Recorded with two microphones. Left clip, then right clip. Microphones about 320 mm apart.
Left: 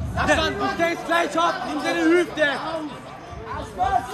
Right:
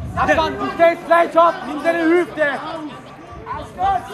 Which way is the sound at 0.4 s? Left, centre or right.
Centre.